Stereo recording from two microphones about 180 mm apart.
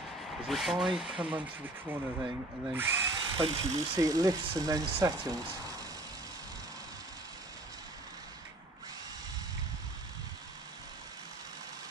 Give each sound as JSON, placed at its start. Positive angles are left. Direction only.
{"t": 0.5, "sound": "speech", "side_deg": 0}